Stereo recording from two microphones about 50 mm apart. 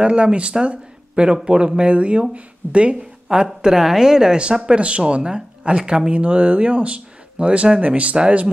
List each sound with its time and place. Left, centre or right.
0.0 s speech: right
3.4 s speech: centre; by 8.5 s right